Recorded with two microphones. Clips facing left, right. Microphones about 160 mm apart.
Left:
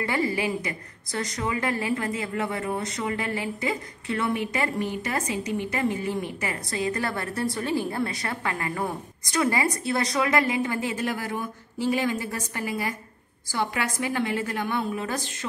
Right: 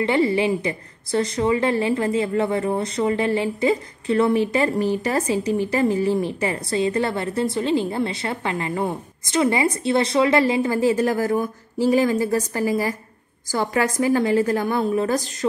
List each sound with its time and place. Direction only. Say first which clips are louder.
0.0 s a woman's voice: right 7 dB; 25° right (ahead or behind)